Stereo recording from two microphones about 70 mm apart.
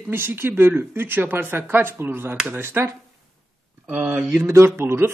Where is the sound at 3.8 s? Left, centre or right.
Right.